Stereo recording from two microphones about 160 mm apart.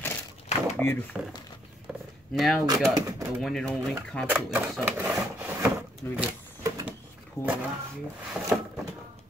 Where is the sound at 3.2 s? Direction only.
Centre (ahead or behind).